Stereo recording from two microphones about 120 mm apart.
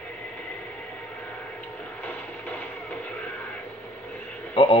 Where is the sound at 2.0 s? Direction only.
15° left (ahead or behind).